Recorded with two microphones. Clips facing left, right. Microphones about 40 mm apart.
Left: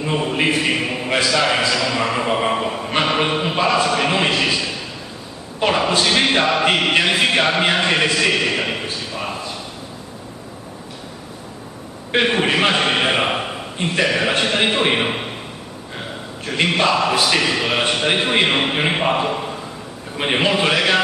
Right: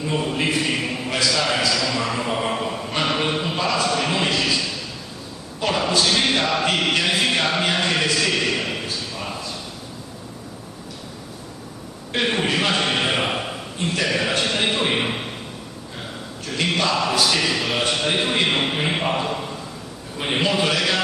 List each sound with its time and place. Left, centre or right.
0.0 s a sound: left
5.6 s a man's voice: left
12.3 s a man's voice: left
16.4 s a man's voice: left